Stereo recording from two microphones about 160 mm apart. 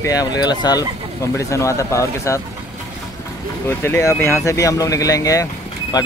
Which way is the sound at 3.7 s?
15° left (ahead or behind).